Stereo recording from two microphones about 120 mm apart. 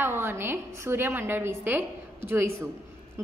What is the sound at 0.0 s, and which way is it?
A woman's voice, 20° right (ahead or behind).